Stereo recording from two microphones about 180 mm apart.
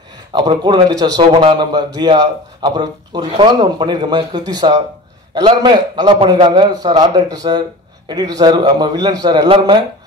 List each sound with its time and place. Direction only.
0.3 s speech: 25° right (ahead or behind)